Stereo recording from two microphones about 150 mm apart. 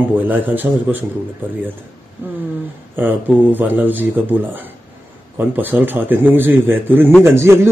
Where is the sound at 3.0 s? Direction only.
10° right (ahead or behind).